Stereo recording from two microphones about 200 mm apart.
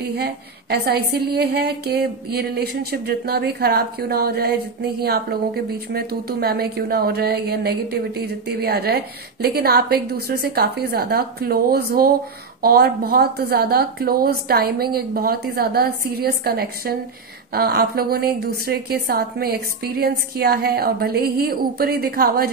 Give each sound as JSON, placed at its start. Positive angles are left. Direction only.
{"t": 0.1, "sound": "a woman's voice", "side_deg": -55}